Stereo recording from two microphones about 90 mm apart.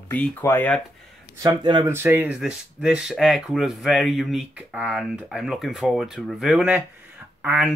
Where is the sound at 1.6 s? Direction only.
55° right (ahead or behind).